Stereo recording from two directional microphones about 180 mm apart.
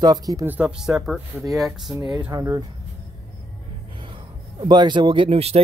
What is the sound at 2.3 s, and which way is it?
Speech, 20° right (ahead or behind).